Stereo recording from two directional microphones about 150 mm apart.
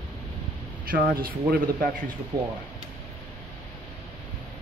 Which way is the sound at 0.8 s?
75° right (ahead or behind).